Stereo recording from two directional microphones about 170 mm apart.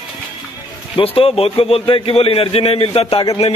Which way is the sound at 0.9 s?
35° left (ahead or behind).